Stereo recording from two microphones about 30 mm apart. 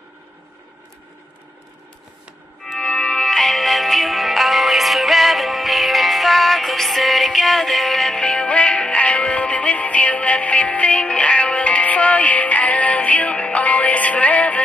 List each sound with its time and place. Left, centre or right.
2.8 s music: left
3.3 s music: left
8.2 s music: left